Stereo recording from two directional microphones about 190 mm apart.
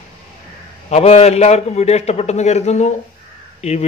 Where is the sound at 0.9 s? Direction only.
35° left (ahead or behind).